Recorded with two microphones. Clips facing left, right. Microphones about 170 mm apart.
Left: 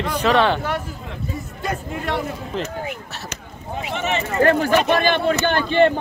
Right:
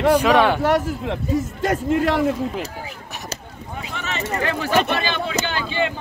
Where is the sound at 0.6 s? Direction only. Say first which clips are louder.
Right 7 dB; 75° right (ahead or behind).